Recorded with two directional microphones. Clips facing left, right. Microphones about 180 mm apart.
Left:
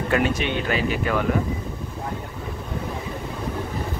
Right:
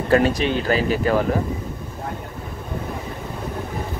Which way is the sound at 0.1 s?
35° right (ahead or behind).